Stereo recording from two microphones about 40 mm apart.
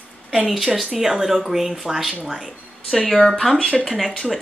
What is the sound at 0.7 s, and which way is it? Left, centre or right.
Speech, centre.